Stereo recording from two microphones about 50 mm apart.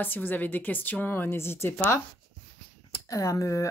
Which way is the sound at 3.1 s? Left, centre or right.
Left.